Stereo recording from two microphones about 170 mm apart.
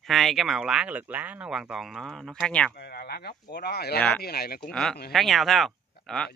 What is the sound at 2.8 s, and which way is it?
Speech, 65° left (ahead or behind).